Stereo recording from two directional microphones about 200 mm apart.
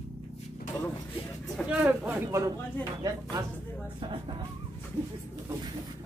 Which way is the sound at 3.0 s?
15° right (ahead or behind).